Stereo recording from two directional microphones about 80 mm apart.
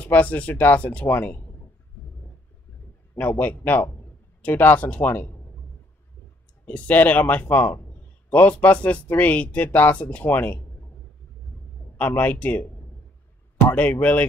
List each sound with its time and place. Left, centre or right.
0.0 s speech: centre
3.2 s speech: centre
6.6 s speech: centre
12.0 s speech: left